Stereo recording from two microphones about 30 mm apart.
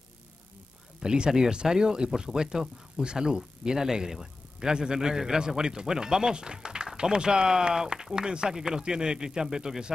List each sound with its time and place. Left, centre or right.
1.0 s speech: right